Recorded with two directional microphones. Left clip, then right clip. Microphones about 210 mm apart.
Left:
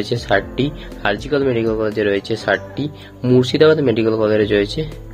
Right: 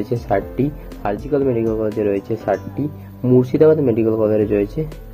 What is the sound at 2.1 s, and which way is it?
Speech, centre (ahead or behind).